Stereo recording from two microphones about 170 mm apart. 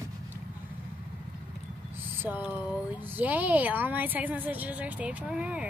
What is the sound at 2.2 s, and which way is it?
A woman's voice, 10° right (ahead or behind).